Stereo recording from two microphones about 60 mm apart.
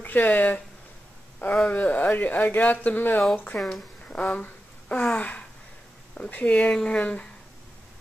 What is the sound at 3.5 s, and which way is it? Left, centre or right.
Speech, centre.